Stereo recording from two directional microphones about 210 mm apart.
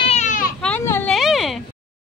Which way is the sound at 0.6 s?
10° left (ahead or behind).